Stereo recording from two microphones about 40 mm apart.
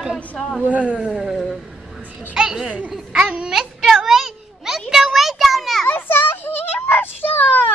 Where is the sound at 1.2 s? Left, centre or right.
Centre.